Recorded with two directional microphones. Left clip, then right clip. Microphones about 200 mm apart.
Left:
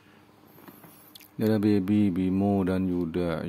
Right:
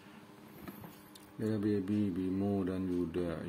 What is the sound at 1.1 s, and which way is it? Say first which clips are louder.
Speech: left 11 dB; 45° left (ahead or behind).